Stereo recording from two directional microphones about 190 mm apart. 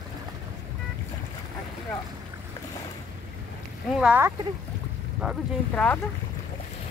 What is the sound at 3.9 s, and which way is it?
Speech, 10° right (ahead or behind).